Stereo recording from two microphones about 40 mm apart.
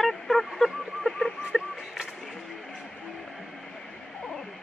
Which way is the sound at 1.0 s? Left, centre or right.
Centre.